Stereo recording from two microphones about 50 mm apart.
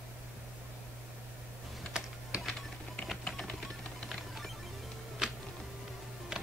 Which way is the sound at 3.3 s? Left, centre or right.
Centre.